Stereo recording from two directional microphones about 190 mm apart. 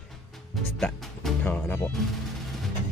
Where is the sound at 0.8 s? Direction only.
5° left (ahead or behind).